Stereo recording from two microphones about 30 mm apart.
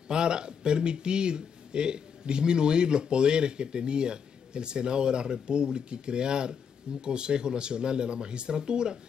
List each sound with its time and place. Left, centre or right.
0.1 s speech: right